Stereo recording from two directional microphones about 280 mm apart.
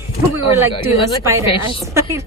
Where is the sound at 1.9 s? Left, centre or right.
Centre.